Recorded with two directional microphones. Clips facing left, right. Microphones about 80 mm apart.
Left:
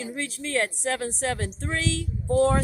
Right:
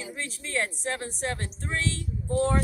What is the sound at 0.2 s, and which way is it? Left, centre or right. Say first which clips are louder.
A woman's voice: left 4 dB; left.